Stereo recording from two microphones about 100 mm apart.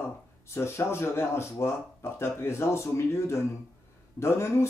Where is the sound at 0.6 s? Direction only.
25° left (ahead or behind).